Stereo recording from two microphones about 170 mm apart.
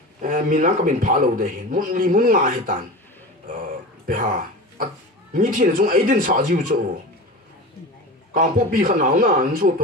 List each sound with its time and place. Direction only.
0.2 s a man's voice: 50° right (ahead or behind)
3.5 s a sound: 55° right (ahead or behind)
5.3 s a man's voice: 55° right (ahead or behind)
8.3 s a man's voice: 50° right (ahead or behind)